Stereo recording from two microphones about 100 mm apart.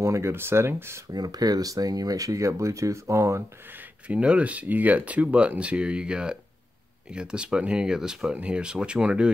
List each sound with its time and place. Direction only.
0.0 s speech: 30° right (ahead or behind)
1.1 s speech: 40° right (ahead or behind)
4.1 s speech: 10° right (ahead or behind)